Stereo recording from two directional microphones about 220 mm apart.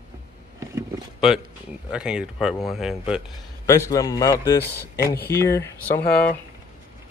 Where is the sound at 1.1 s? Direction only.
Centre (ahead or behind).